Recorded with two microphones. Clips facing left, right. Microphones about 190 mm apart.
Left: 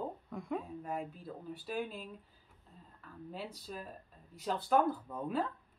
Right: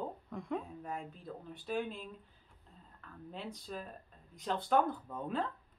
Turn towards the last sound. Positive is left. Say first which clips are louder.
# left 1 dB
turn(degrees=5)  # may be behind; listen again after turning